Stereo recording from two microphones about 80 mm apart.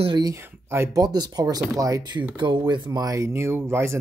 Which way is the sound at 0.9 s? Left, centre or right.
Right.